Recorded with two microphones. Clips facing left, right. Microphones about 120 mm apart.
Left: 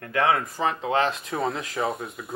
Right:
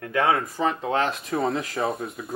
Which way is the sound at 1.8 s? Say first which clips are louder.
Left 3 dB; 25° right (ahead or behind).